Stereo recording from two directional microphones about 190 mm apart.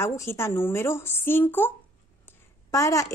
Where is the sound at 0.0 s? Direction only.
15° left (ahead or behind).